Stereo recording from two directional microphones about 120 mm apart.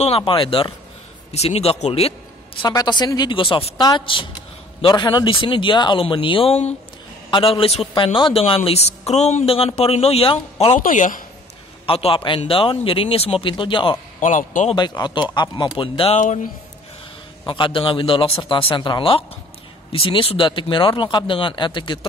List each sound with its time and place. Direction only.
0.0 s speech: 50° left (ahead or behind)
1.3 s speech: 60° left (ahead or behind)
2.7 s speech: 35° left (ahead or behind); by 10.8 s 50° left (ahead or behind)
10.9 s speech: 90° left
11.8 s speech: 50° left (ahead or behind)
14.2 s speech: 90° left
14.8 s speech: 40° left (ahead or behind)
17.5 s speech: 45° left (ahead or behind)